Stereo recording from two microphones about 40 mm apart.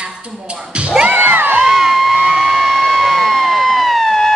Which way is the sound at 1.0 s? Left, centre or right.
Right.